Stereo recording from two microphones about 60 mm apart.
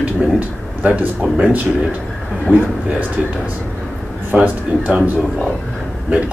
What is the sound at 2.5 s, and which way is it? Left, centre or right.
Speech, right.